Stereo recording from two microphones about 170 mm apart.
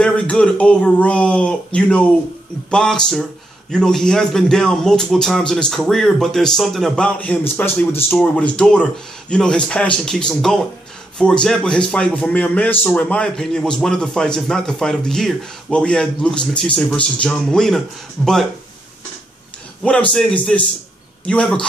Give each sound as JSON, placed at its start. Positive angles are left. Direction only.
{"t": 0.0, "sound": "a man's voice", "side_deg": 5}
{"t": 19.8, "sound": "a man's voice", "side_deg": 5}